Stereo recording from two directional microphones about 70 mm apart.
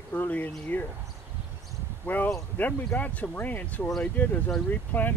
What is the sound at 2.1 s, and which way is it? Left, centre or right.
Speech, left.